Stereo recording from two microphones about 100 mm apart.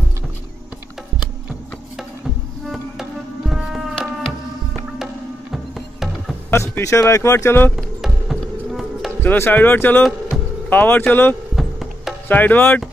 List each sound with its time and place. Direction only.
2.6 s music: 5° right (ahead or behind)
5.5 s music: centre (ahead or behind)
6.5 s speech: 30° left (ahead or behind)
7.7 s music: 5° right (ahead or behind)
9.2 s speech: 20° left (ahead or behind)
11.5 s music: 5° right (ahead or behind)
12.3 s speech: 15° left (ahead or behind)